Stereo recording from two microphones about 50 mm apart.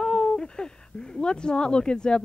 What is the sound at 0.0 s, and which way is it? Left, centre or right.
Speech, left.